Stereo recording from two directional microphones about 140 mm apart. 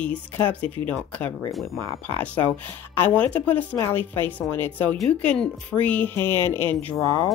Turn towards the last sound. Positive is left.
turn(degrees=10)  # may be behind; listen again after turning